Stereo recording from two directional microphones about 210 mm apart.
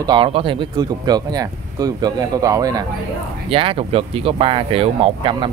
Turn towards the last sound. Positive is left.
turn(degrees=-25)  # may be behind; listen again after turning